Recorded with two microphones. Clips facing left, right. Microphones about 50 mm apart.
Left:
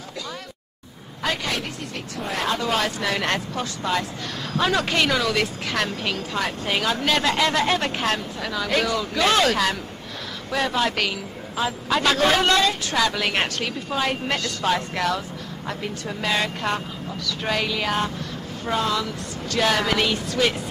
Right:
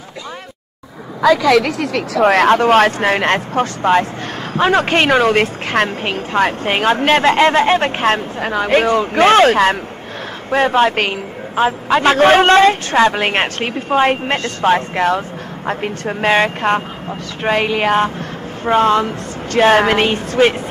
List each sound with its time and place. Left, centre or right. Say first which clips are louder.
1.6 s a woman's voice: right 13 dB; right